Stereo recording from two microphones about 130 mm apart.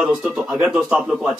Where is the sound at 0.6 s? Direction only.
5° right (ahead or behind).